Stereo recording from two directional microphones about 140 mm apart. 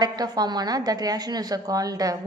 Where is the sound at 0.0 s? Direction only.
30° right (ahead or behind).